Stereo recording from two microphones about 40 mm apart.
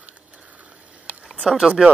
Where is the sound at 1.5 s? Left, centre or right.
Centre.